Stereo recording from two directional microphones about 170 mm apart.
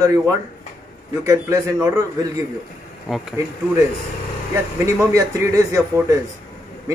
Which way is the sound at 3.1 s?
5° right (ahead or behind).